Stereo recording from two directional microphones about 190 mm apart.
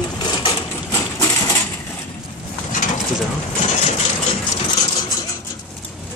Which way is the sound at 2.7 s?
40° left (ahead or behind).